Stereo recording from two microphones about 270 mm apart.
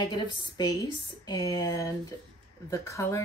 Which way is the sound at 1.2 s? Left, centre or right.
Centre.